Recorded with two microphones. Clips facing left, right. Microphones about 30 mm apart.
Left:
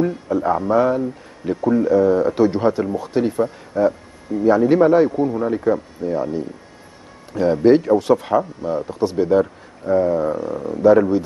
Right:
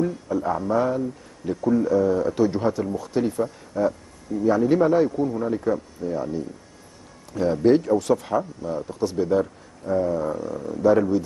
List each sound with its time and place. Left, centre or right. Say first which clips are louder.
0.0 s speech: left 5 dB; left